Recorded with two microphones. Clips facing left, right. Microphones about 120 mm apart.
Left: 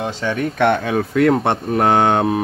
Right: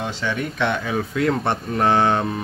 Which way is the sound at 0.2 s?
45° left (ahead or behind).